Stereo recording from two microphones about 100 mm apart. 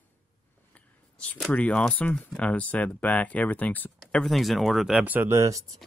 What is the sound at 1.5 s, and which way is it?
Speech, 10° left (ahead or behind).